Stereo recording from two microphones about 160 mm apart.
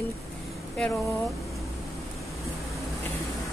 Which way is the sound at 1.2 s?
Centre (ahead or behind).